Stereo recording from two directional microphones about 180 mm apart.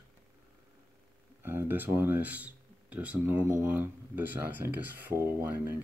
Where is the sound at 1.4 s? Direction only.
10° right (ahead or behind).